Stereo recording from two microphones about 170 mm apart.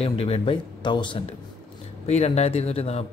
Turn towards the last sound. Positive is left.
turn(degrees=35)  # may be behind; listen again after turning